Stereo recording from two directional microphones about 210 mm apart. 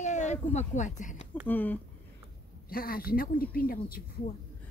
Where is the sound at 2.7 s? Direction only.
45° left (ahead or behind).